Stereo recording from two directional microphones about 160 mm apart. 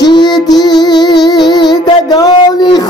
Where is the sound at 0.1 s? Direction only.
25° left (ahead or behind).